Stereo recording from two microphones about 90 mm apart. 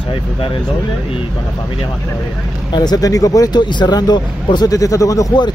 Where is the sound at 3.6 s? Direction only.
55° left (ahead or behind); by 5.3 s 40° left (ahead or behind).